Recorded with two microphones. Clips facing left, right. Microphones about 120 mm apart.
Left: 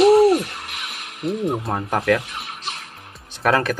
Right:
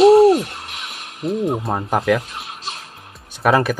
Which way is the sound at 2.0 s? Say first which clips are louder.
Right 1 dB; 5° right (ahead or behind).